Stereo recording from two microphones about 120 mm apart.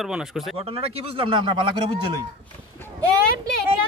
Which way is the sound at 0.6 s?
55° right (ahead or behind).